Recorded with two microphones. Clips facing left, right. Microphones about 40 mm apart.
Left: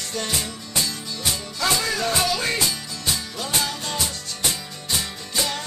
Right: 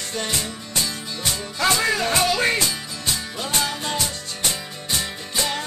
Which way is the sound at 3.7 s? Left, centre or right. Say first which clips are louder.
Right 3 dB; centre.